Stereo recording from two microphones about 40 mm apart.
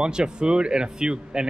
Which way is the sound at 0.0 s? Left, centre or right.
Right.